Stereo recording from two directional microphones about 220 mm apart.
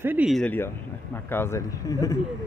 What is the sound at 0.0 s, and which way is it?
Speech, 5° right (ahead or behind).